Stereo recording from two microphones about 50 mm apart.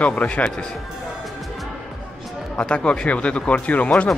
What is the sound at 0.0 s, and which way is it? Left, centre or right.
Speech, left.